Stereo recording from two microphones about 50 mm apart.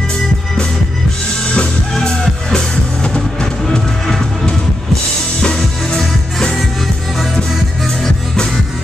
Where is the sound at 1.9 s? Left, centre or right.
Centre.